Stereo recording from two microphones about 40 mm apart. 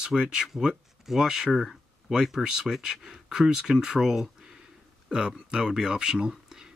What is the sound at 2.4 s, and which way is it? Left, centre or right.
Speech, centre.